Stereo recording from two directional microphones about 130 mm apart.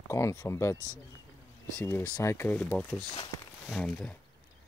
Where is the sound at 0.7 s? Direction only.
20° right (ahead or behind).